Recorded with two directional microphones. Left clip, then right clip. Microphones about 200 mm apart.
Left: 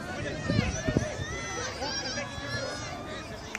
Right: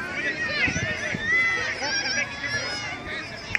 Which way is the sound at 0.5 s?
40° left (ahead or behind).